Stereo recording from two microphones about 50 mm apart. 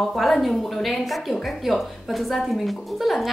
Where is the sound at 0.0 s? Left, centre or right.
Centre.